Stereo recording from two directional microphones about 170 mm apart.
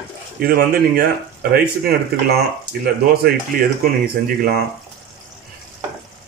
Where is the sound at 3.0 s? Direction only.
60° right (ahead or behind).